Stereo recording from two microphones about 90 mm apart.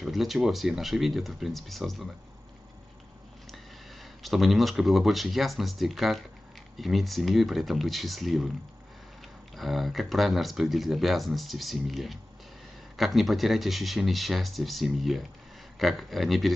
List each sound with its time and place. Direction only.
0.0 s speech: centre (ahead or behind)
3.5 s speech: centre (ahead or behind)
9.6 s speech: centre (ahead or behind)